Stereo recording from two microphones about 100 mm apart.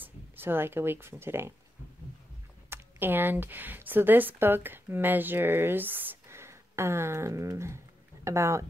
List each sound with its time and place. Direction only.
0.0 s speech: 20° right (ahead or behind)
2.7 s speech: 20° right (ahead or behind)